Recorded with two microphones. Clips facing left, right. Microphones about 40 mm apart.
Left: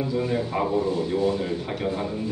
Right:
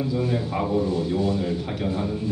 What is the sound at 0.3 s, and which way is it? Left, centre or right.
Speech, centre.